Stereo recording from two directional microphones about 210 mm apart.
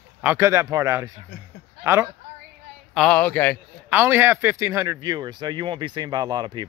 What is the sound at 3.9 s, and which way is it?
Speech, 10° right (ahead or behind).